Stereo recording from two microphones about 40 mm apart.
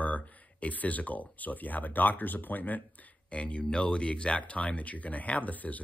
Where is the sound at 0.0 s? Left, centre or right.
Left.